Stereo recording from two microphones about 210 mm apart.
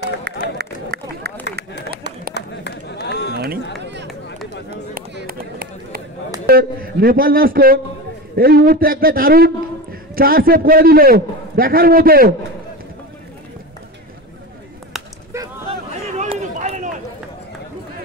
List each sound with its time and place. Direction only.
0.6 s run: 50° right (ahead or behind)
2.3 s run: 55° left (ahead or behind)
3.8 s run: 55° right (ahead or behind)
4.9 s a sound: 45° right (ahead or behind)
6.4 s a man's voice: 45° right (ahead or behind)
15.9 s a sound: 35° right (ahead or behind)